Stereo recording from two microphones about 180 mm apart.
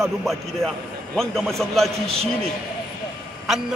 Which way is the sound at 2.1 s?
35° right (ahead or behind).